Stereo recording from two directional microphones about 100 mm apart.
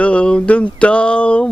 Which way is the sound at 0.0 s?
10° left (ahead or behind).